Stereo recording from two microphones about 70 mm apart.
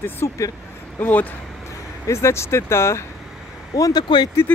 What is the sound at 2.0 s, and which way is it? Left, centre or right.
Speech, left.